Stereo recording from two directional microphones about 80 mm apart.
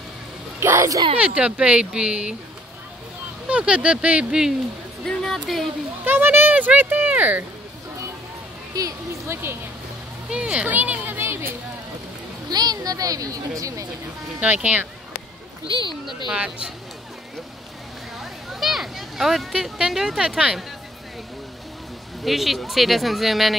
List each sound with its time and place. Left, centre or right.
0.6 s speech: right
1.2 s speech: centre
3.4 s speech: centre
5.0 s speech: centre
6.0 s a child's voice: right
9.3 s speech: right
10.3 s speech: centre; by 11.5 s right
12.4 s speech: right
14.4 s speech: centre
15.6 s speech: left
16.3 s speech: centre
18.2 s speech: centre
22.2 s speech: centre